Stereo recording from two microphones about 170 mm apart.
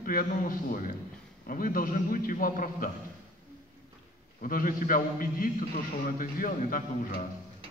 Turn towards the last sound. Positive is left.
turn(degrees=55)  # may be behind; listen again after turning